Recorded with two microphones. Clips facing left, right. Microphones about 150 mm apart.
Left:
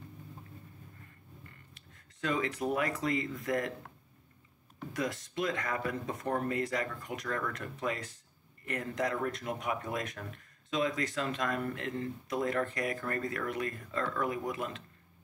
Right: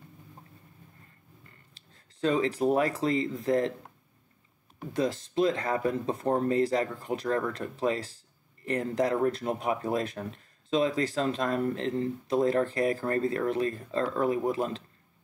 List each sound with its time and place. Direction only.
1.7 s speech: 30° right (ahead or behind)
4.9 s speech: 30° right (ahead or behind)